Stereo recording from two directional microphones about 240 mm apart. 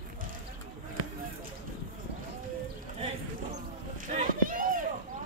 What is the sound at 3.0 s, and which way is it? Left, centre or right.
Run, right.